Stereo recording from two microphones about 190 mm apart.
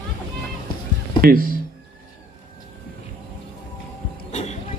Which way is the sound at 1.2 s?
50° right (ahead or behind).